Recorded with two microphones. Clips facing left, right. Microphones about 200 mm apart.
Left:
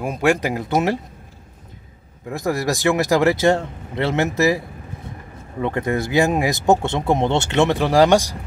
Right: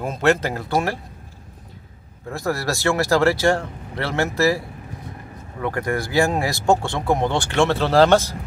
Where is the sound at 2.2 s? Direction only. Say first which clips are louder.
Left 3 dB; 15° left (ahead or behind).